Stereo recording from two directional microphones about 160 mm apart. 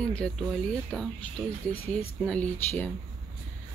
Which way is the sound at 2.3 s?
10° left (ahead or behind).